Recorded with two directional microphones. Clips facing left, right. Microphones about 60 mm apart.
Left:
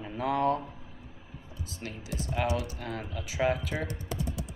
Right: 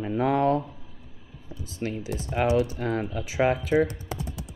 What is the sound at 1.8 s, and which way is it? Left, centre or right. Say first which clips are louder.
Speech: right 8 dB; right.